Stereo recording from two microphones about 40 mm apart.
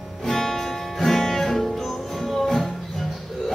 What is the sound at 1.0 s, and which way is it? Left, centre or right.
Music, centre.